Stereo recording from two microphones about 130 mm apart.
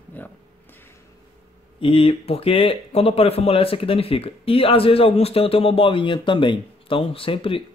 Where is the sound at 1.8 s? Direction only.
45° left (ahead or behind).